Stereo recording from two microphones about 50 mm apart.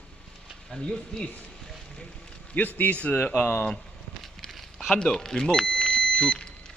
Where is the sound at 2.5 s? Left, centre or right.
Left.